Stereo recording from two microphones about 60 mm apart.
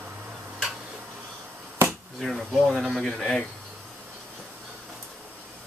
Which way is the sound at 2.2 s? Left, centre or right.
Centre.